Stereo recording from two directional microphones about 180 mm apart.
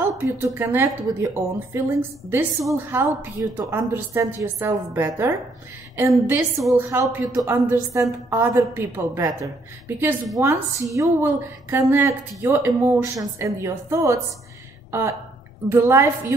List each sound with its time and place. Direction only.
0.2 s a woman's voice: 10° right (ahead or behind)
6.7 s a woman's voice: 15° right (ahead or behind)